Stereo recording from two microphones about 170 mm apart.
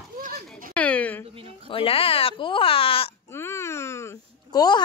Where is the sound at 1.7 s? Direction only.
35° left (ahead or behind).